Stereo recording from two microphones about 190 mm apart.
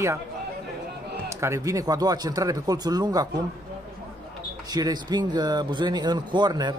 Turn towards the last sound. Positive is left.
turn(degrees=-20)  # may be behind; listen again after turning